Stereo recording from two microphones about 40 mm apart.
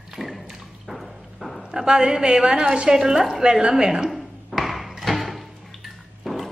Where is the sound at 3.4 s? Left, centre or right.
Centre.